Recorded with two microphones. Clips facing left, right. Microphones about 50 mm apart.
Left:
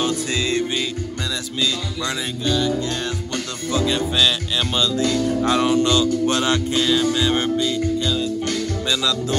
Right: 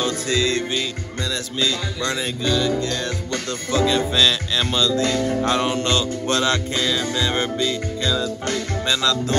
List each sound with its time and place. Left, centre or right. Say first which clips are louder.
0.0 s music: right 1 dB; left
2.0 s speech: right 1 dB; centre
4.7 s speech: right 1 dB; left
5.0 s music: left 1 dB; right
5.5 s music: left 5 dB; right
5.8 s music: left 4 dB; right
6.2 s speech: left 1 dB; left
7.2 s music: left 2 dB; centre